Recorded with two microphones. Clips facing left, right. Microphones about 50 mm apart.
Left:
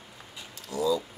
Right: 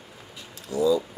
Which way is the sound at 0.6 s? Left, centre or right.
Centre.